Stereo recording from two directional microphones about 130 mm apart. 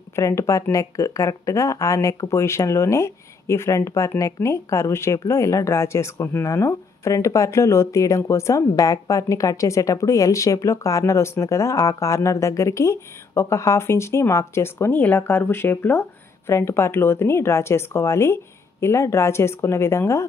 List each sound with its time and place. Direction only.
0.1 s speech: 25° left (ahead or behind)